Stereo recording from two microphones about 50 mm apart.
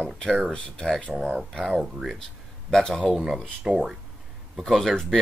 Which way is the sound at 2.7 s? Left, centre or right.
Centre.